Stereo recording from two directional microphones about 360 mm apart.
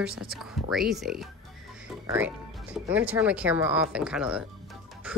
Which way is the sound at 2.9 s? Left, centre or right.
Centre.